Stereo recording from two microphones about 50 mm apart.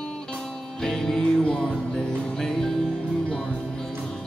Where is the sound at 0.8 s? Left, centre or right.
Centre.